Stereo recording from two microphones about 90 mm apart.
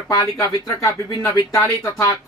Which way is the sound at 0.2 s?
50° left (ahead or behind).